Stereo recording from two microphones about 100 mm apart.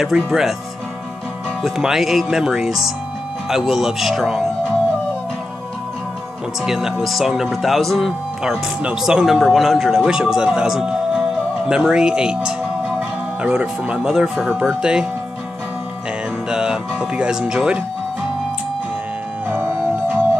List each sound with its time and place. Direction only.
0.0 s speech: 5° right (ahead or behind)
1.6 s speech: 5° right (ahead or behind)
6.6 s speech: 5° right (ahead or behind)
16.4 s speech: 5° right (ahead or behind)
19.5 s music: 20° right (ahead or behind)